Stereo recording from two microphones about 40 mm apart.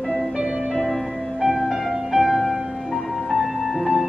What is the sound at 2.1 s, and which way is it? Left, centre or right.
Music, centre.